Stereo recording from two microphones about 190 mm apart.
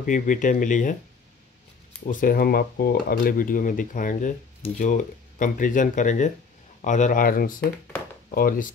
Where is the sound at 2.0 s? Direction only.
50° left (ahead or behind).